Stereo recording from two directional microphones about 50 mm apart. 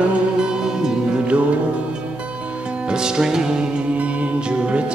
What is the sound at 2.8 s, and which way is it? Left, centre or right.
Speech, centre.